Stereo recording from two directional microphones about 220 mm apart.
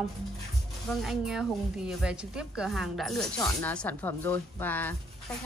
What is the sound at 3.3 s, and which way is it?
Speech, 15° left (ahead or behind).